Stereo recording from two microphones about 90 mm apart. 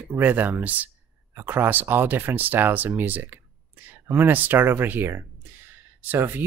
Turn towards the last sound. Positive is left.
turn(degrees=-20)  # may be behind; listen again after turning